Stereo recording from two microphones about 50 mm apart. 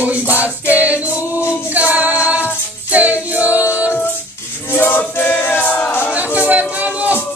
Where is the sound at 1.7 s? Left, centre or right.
Right.